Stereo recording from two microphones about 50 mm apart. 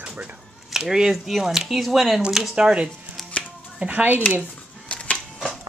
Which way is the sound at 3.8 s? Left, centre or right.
Right.